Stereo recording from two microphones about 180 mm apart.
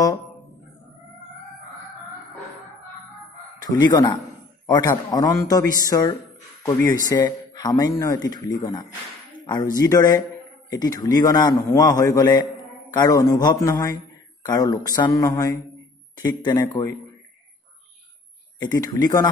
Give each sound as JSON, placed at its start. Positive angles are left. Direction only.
{"t": 3.5, "sound": "a sound", "side_deg": 20}
{"t": 3.9, "sound": "speech", "side_deg": 20}
{"t": 18.6, "sound": "speech", "side_deg": 20}